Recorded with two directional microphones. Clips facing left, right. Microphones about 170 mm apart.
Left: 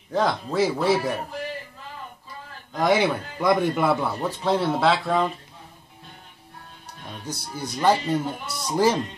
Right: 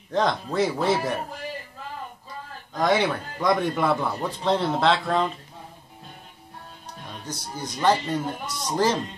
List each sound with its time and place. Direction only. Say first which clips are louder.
0.1 s speech: even; 5° left (ahead or behind)
2.8 s a man's voice: left 1 dB; 10° left (ahead or behind)
7.2 s a man's voice: left 2 dB; 10° left (ahead or behind)